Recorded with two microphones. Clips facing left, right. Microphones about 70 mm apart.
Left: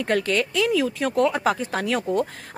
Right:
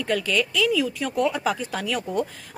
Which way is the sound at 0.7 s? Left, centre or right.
Left.